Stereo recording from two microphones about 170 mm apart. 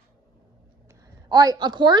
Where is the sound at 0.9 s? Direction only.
20° right (ahead or behind).